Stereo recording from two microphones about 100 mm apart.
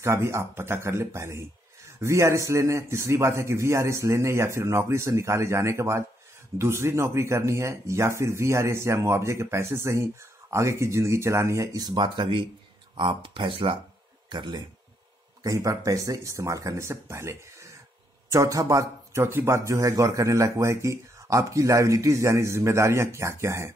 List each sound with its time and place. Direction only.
0.0 s speech: 25° right (ahead or behind); by 13.7 s 60° right (ahead or behind)
14.3 s speech: 50° right (ahead or behind)
15.4 s a man's voice: 35° right (ahead or behind)